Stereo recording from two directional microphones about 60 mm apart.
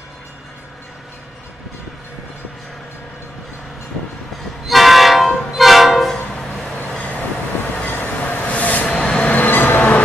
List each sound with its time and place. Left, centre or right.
4.6 s train: centre
6.1 s a sound: centre
7.9 s vehicle: left
9.0 s train: centre
9.3 s train: left